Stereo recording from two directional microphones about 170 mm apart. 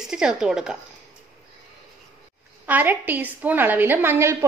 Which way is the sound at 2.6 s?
10° right (ahead or behind).